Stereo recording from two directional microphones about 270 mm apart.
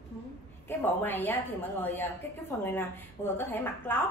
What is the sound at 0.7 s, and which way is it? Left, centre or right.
A woman's voice, centre.